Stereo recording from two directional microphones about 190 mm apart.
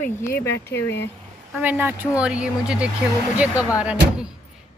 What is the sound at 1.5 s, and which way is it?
A woman's voice, 10° right (ahead or behind).